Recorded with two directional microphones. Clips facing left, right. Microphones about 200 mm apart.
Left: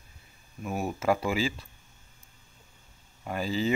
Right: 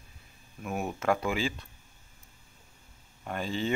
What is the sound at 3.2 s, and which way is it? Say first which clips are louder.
Speech: left 3 dB; 5° left (ahead or behind).